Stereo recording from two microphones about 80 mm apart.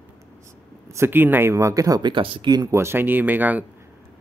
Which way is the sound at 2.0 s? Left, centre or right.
Right.